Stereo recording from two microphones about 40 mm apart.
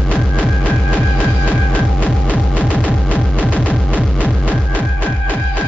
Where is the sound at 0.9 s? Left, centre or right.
Left.